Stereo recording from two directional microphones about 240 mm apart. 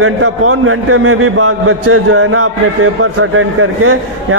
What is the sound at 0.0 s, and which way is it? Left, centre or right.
A man's voice, right.